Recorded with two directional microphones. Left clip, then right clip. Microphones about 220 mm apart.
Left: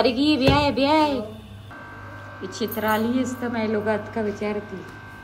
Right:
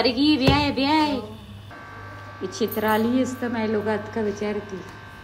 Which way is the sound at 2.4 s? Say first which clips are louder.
Right 2 dB; 20° right (ahead or behind).